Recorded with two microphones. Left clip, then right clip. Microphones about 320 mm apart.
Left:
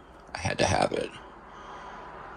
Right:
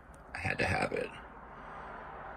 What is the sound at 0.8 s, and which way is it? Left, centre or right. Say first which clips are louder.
Speech: left 7 dB; left.